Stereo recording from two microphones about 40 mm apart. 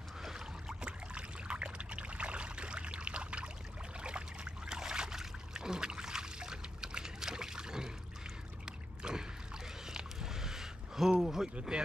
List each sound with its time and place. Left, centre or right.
0.2 s boat: centre
0.8 s trickle: right
8.6 s a sound: centre
11.7 s speech: centre